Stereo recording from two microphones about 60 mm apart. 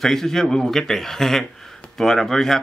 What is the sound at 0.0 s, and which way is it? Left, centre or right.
Speech, centre.